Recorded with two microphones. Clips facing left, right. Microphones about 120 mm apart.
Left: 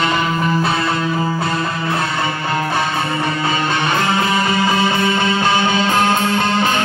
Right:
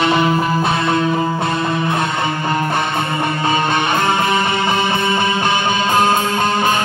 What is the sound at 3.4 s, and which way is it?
Music, 20° right (ahead or behind).